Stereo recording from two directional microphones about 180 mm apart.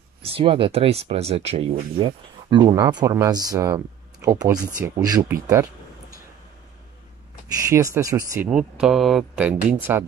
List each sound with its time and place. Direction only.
0.2 s speech: 30° right (ahead or behind)
7.7 s speech: 15° right (ahead or behind)
8.5 s speech: 5° right (ahead or behind)